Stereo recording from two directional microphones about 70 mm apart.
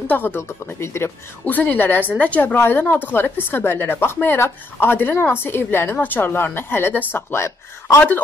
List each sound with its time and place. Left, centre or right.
0.1 s a woman's voice: left
0.4 s a woman's voice: left
1.4 s a woman's voice: left
2.4 s a woman's voice: left